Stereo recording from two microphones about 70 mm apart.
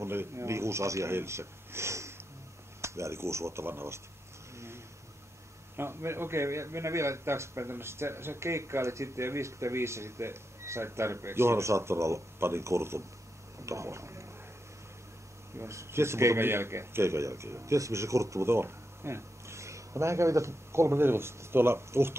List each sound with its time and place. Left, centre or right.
0.0 s a man's voice: right
4.6 s vehicle: right
5.8 s a man's voice: right
15.5 s a man's voice: right